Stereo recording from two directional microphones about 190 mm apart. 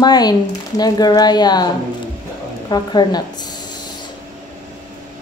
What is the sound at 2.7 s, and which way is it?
Speech, 20° left (ahead or behind).